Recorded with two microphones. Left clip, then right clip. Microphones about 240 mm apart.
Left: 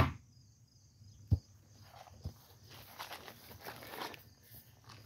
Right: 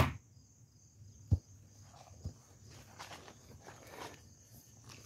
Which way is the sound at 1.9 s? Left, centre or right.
Centre.